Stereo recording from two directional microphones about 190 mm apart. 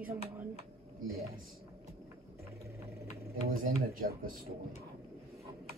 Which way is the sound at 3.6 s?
50° right (ahead or behind).